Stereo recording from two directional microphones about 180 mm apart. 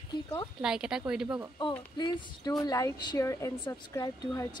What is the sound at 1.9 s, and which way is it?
Speech, 25° left (ahead or behind).